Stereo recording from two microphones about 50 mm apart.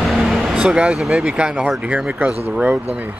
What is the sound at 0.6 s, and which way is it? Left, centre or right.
Speech, centre.